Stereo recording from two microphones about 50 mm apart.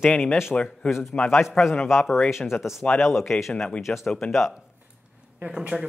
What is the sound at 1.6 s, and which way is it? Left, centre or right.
Speech, centre.